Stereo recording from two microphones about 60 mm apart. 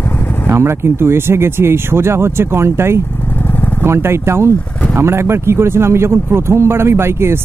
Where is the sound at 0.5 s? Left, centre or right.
Right.